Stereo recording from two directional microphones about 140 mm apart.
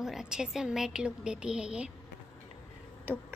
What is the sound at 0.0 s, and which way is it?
Speech, 5° right (ahead or behind).